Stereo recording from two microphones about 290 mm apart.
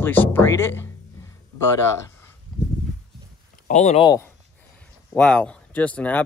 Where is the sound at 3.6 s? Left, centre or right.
Left.